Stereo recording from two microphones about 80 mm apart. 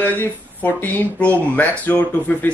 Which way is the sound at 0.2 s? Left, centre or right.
Left.